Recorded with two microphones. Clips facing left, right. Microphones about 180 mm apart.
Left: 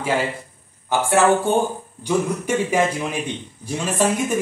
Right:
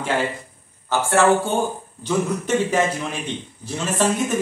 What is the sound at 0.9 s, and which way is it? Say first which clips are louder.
A woman's voice: even; 15° left (ahead or behind).